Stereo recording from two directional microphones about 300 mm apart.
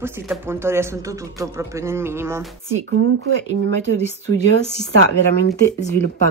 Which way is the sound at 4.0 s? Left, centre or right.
Left.